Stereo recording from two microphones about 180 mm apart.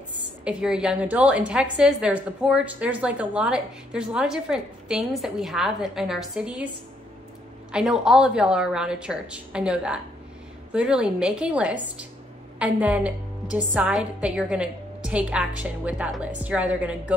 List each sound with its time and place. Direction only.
0.5 s a woman's voice: 5° right (ahead or behind)
7.7 s a woman's voice: 5° right (ahead or behind)